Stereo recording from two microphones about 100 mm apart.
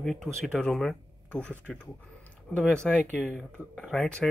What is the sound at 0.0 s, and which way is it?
Speech, centre (ahead or behind).